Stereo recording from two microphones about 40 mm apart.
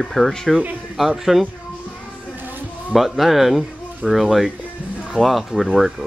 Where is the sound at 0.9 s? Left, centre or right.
Centre.